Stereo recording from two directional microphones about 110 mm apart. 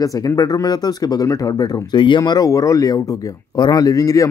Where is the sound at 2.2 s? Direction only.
30° left (ahead or behind).